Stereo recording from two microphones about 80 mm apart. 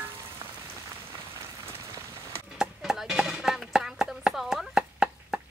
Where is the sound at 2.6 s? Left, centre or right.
Centre.